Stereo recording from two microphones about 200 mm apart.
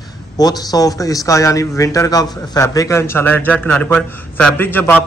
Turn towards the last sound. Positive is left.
turn(degrees=10)  # may be behind; listen again after turning